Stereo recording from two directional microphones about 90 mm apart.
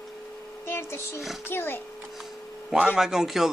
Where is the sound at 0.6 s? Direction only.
30° left (ahead or behind).